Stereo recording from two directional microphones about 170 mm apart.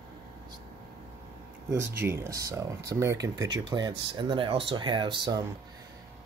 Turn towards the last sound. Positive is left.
turn(degrees=-25)  # may be behind; listen again after turning